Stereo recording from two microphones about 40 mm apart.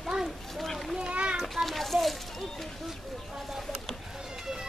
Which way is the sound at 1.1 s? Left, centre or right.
Right.